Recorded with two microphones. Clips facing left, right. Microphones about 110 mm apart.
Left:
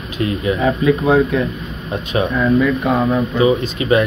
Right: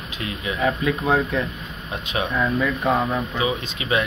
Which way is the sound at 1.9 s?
45° left (ahead or behind).